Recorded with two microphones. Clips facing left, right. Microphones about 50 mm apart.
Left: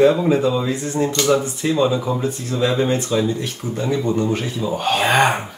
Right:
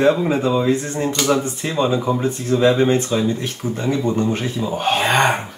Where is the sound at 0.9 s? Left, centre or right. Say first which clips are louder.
Left 1 dB; centre.